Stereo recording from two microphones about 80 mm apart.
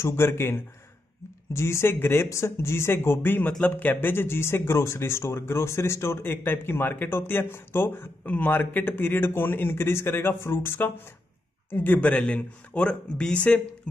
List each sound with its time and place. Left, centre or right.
0.0 s speech: left; by 13.6 s centre